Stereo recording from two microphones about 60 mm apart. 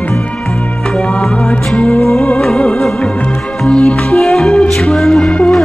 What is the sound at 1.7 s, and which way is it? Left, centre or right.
Music, left.